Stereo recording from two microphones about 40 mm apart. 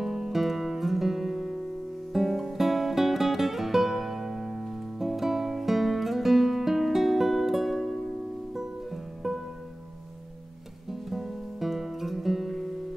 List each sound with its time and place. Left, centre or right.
0.0 s music: centre
10.9 s music: centre